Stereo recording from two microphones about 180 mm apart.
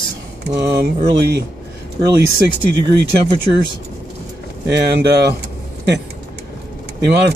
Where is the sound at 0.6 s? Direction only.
65° right (ahead or behind).